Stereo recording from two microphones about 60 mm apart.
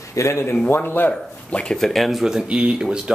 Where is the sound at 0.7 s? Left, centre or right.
Left.